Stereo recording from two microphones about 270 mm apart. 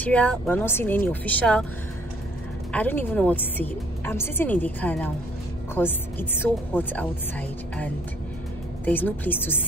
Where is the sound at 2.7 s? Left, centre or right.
Centre.